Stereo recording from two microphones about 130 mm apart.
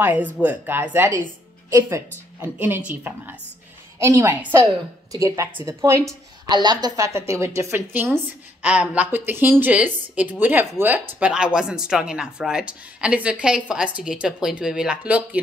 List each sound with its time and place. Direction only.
0.0 s a woman's voice: 15° right (ahead or behind)